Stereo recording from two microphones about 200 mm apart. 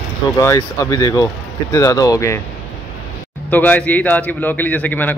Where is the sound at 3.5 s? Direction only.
10° left (ahead or behind).